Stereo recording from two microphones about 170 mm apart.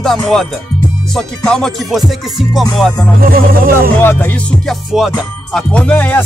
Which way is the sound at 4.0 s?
10° left (ahead or behind).